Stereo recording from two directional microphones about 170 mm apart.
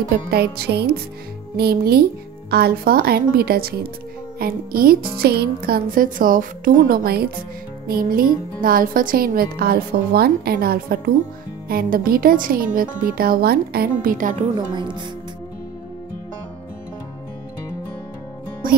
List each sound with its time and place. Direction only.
0.3 s music: 70° right (ahead or behind)
1.6 s speech: 65° right (ahead or behind)